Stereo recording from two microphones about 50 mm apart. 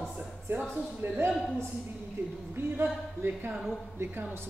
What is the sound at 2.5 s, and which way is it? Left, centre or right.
A woman's voice, right.